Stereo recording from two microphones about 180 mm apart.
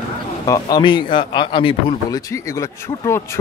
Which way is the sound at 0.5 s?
20° left (ahead or behind).